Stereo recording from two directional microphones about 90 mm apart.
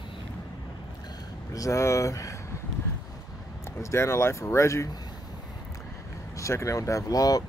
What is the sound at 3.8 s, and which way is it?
Speech, 30° left (ahead or behind).